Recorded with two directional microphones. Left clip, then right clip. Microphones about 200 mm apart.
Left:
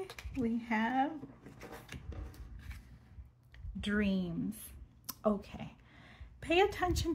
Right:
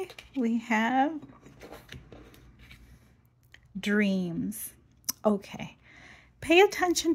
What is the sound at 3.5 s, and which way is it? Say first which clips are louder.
A woman's voice: right 8 dB; 40° right (ahead or behind).